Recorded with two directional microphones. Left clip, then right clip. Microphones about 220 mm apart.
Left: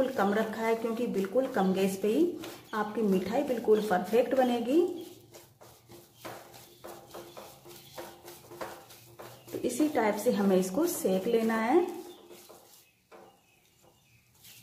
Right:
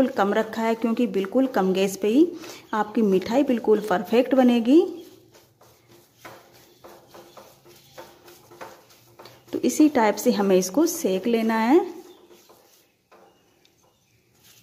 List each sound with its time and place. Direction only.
0.0 s speech: 50° right (ahead or behind)
9.6 s speech: 50° right (ahead or behind)